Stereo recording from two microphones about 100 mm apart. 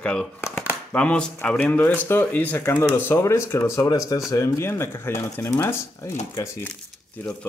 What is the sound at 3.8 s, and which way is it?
A man's voice, 40° left (ahead or behind).